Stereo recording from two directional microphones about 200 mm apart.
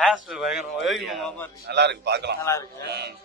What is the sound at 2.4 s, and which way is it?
Speech, 15° left (ahead or behind).